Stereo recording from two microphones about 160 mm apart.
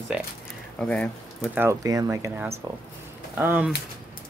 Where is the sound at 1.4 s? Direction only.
10° right (ahead or behind).